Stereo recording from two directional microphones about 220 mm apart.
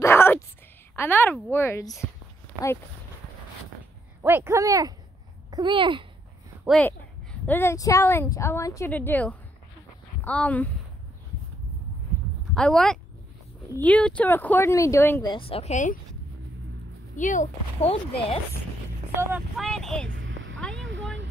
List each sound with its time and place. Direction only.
0.0 s whispering: 10° left (ahead or behind)
0.9 s a woman's voice: 10° left (ahead or behind)
4.2 s a child's voice: 10° right (ahead or behind)
6.6 s a woman's voice: 5° left (ahead or behind)
12.5 s a woman's voice: 5° left (ahead or behind)
15.3 s a woman's voice: 25° left (ahead or behind)
17.2 s speech: 35° left (ahead or behind)
19.3 s speech: centre (ahead or behind)
20.1 s a sound: 60° right (ahead or behind)